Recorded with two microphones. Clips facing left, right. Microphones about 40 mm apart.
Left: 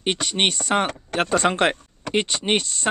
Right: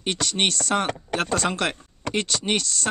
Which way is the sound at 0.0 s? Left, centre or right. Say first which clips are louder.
Left 2 dB; left.